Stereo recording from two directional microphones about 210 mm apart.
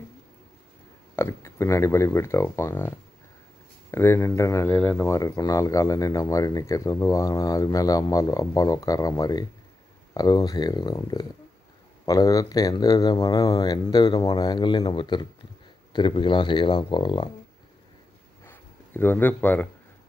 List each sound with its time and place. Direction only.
1.1 s speech: 15° left (ahead or behind)
3.9 s speech: 15° left (ahead or behind)
18.4 s a sound: 10° left (ahead or behind)